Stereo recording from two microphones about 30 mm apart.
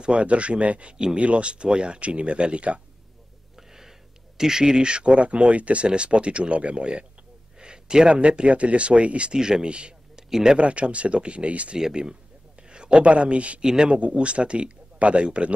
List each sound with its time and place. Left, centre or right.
0.2 s speech: right
3.5 s a sound: centre
4.4 s speech: right
7.5 s a sound: right
8.1 s speech: right
9.3 s speech: right
10.1 s a sound: centre
10.6 s speech: right
11.9 s speech: right
12.6 s a sound: right
13.0 s speech: right
13.6 s speech: right
13.9 s speech: right